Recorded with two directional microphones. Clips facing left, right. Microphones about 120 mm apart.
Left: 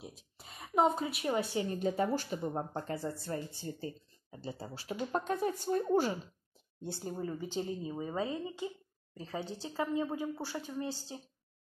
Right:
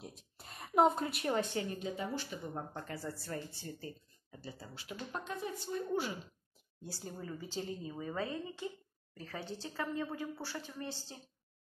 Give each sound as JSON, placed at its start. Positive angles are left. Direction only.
{"t": 0.0, "sound": "a woman's voice", "side_deg": 0}
{"t": 1.8, "sound": "speech", "side_deg": 45}
{"t": 2.4, "sound": "speech", "side_deg": 30}
{"t": 5.1, "sound": "speech", "side_deg": 45}
{"t": 6.8, "sound": "a woman's voice", "side_deg": 20}